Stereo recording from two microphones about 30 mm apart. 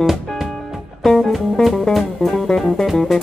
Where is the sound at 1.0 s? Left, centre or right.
Centre.